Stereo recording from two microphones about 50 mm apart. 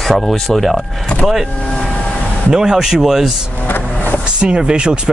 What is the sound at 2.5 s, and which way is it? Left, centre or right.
Speech, centre.